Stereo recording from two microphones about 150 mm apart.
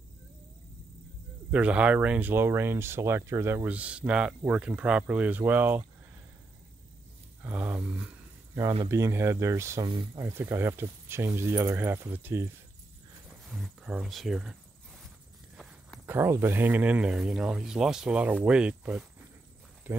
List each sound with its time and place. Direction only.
1.5 s speech: 10° right (ahead or behind)
7.4 s speech: 10° right (ahead or behind)
9.8 s speech: 30° right (ahead or behind)
10.2 s speech: 15° right (ahead or behind)
13.5 s speech: centre (ahead or behind)
15.5 s walk: 5° right (ahead or behind)
16.1 s speech: 15° right (ahead or behind)